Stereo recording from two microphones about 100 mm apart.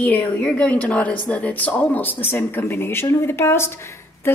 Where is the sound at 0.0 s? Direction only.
15° left (ahead or behind).